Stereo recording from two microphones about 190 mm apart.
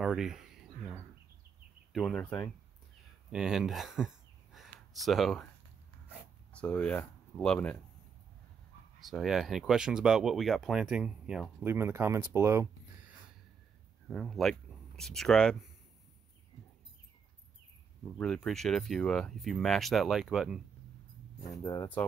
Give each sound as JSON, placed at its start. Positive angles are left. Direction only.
{"t": 0.0, "sound": "speech", "side_deg": 0}
{"t": 3.3, "sound": "speech", "side_deg": -5}
{"t": 6.0, "sound": "writing", "side_deg": 5}
{"t": 9.0, "sound": "speech", "side_deg": 0}
{"t": 14.0, "sound": "speech", "side_deg": 0}
{"t": 18.0, "sound": "speech", "side_deg": 5}
{"t": 21.4, "sound": "speech", "side_deg": 20}